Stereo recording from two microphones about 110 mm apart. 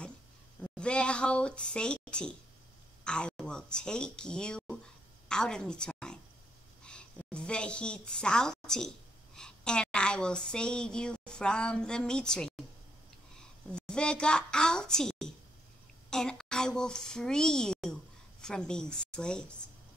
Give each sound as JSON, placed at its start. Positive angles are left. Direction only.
{"t": 0.6, "sound": "a woman's voice", "side_deg": 10}